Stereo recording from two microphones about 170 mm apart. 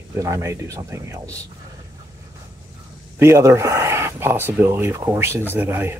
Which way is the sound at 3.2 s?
15° right (ahead or behind).